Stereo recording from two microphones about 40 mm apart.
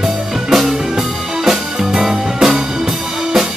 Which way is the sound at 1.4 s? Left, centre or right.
Centre.